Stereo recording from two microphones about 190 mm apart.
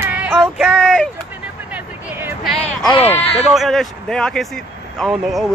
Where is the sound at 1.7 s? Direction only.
10° right (ahead or behind).